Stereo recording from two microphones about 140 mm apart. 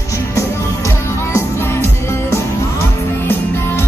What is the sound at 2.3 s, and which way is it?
Music, 20° left (ahead or behind).